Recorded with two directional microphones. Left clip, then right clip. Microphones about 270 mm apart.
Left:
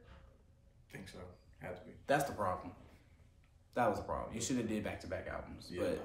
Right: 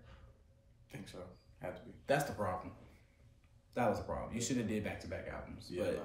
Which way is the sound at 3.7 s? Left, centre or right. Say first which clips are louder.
Left 1 dB; centre.